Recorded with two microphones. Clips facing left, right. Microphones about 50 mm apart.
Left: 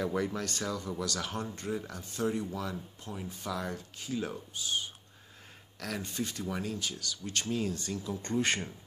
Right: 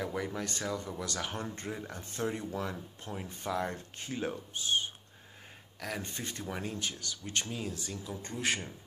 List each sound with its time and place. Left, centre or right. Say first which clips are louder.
0.0 s speech: left 4 dB; centre
0.4 s speech: left 1 dB; centre
1.7 s speech: left 4 dB; centre
2.0 s speech: left 1 dB; right
5.8 s speech: left 1 dB; centre
6.1 s speech: left 4 dB; right
7.5 s speech: left 5 dB; centre